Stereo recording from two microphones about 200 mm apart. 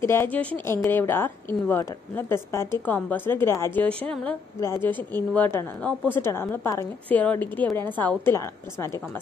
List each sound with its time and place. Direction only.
0.0 s speech: 10° left (ahead or behind)